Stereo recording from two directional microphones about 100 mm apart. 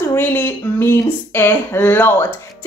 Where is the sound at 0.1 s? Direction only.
20° left (ahead or behind).